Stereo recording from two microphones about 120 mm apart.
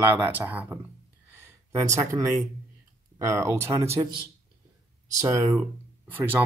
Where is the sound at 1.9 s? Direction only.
30° right (ahead or behind).